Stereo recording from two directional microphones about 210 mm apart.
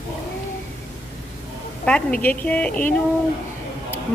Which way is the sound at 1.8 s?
5° left (ahead or behind).